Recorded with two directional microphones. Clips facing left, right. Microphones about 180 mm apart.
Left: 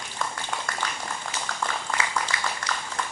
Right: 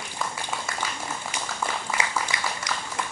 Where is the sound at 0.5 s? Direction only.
10° right (ahead or behind).